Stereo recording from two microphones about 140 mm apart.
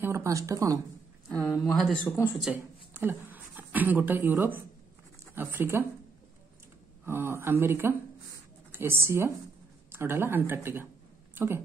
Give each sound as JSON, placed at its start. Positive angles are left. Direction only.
{"t": 0.0, "sound": "speech", "side_deg": -20}
{"t": 1.3, "sound": "speech", "side_deg": 10}
{"t": 2.0, "sound": "speech", "side_deg": 15}
{"t": 2.4, "sound": "speech", "side_deg": -15}
{"t": 7.1, "sound": "speech", "side_deg": -15}